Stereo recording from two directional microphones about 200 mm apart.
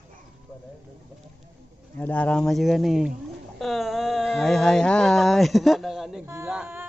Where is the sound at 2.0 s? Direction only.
5° left (ahead or behind).